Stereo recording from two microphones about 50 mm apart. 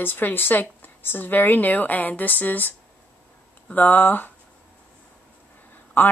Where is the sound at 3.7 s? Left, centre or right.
Left.